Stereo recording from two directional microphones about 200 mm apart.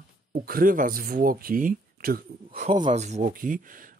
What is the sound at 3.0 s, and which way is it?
Speech, 40° right (ahead or behind).